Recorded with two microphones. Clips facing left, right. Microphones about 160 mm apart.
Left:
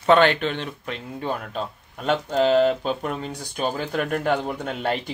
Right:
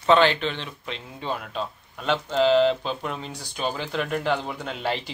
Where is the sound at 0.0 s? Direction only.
50° left (ahead or behind).